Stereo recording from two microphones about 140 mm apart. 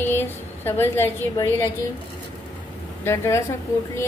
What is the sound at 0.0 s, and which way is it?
A woman's voice, 15° left (ahead or behind).